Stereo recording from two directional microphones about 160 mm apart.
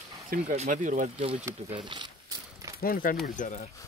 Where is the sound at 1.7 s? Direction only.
30° right (ahead or behind).